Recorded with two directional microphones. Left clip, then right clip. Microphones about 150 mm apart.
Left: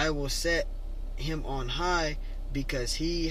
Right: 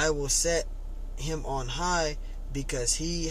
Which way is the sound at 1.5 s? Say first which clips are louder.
Even; 40° right (ahead or behind).